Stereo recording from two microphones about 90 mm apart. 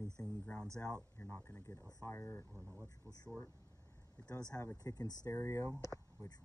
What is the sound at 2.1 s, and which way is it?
Speech, 30° left (ahead or behind).